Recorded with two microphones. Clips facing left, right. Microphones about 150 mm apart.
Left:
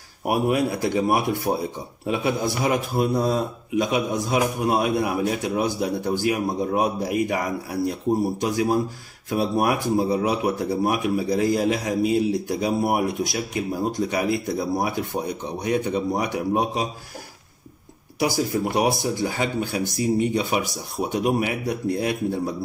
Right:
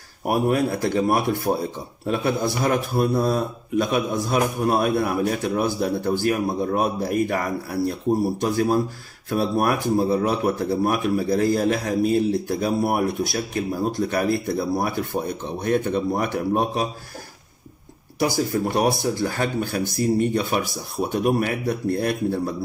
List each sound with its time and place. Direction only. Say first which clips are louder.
0.3 s speech: right 1 dB; 15° left (ahead or behind)
18.2 s speech: right 1 dB; 15° left (ahead or behind)